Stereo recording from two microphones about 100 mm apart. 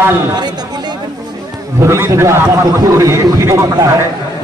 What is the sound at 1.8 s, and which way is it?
A man's voice, 30° right (ahead or behind).